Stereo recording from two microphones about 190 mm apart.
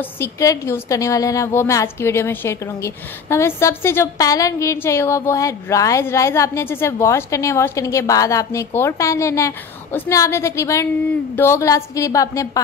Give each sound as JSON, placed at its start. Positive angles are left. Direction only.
{"t": 0.0, "sound": "a woman's voice", "side_deg": 15}